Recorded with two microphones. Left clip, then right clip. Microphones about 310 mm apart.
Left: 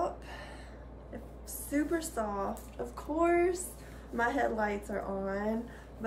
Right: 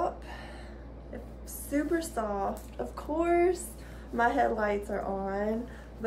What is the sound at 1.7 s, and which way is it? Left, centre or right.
A woman's voice, centre.